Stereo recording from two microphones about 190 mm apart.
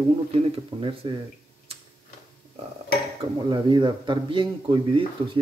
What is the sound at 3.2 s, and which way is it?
Speech, 25° right (ahead or behind).